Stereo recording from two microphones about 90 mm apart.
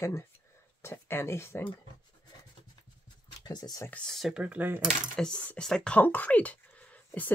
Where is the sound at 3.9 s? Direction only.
10° left (ahead or behind).